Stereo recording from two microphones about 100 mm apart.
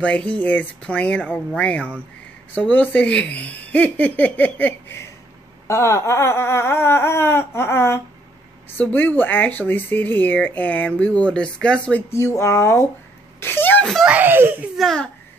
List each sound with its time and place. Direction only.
0.0 s speech: 15° left (ahead or behind)
12.1 s speech: 25° left (ahead or behind)
13.4 s a sound: 20° left (ahead or behind)
14.0 s speech: 20° right (ahead or behind)
14.8 s a child's voice: 5° left (ahead or behind)